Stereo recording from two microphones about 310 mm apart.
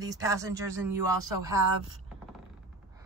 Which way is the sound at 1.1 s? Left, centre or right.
Right.